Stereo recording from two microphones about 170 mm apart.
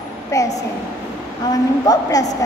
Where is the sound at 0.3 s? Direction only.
20° left (ahead or behind).